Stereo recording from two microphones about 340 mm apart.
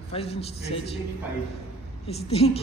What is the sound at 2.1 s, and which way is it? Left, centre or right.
Speech, centre.